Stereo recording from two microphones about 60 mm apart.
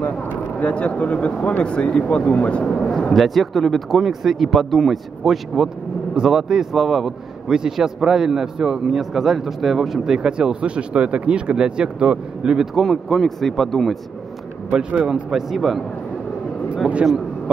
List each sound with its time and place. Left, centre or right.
0.6 s speech: left
3.1 s a man's voice: centre
12.7 s speech: centre
14.7 s a man's voice: centre
16.8 s a man's voice: centre